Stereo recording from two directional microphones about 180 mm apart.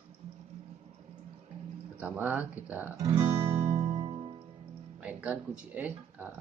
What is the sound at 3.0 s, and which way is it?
Guitar, 20° right (ahead or behind).